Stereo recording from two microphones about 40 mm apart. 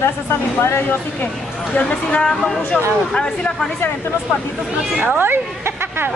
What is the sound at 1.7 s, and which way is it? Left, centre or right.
Speech, left.